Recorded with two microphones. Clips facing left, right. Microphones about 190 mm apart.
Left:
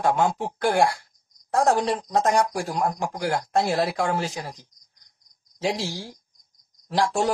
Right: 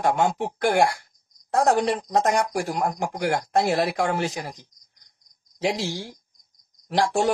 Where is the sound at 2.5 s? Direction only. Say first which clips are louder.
Right 1 dB; 60° right (ahead or behind).